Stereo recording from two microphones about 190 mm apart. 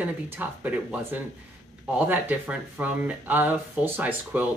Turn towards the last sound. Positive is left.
turn(degrees=-10)  # may be behind; listen again after turning